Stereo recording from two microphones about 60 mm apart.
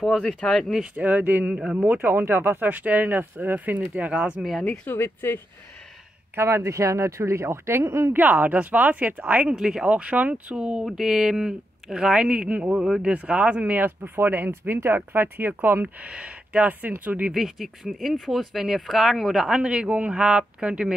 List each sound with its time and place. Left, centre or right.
0.0 s speech: centre
0.9 s speech: right
4.4 s speech: centre
4.8 s speech: left
6.3 s speech: right
7.8 s speech: right
8.1 s speech: right
10.6 s speech: centre
14.0 s speech: right
17.3 s speech: centre
19.6 s speech: centre
19.9 s speech: right
20.2 s speech: centre